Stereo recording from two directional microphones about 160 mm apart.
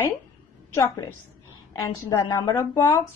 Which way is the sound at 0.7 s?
20° left (ahead or behind).